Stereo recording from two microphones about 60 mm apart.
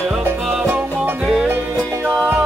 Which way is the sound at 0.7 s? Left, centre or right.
Right.